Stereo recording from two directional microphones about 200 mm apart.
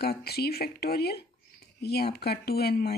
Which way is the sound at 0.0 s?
50° left (ahead or behind).